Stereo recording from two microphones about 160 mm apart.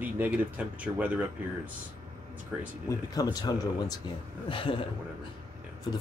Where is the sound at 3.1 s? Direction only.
25° left (ahead or behind).